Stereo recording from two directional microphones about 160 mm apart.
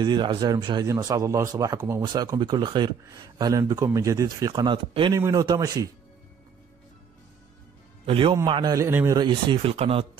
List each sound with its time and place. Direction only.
0.0 s speech: 30° right (ahead or behind)
8.0 s a man's voice: 35° right (ahead or behind)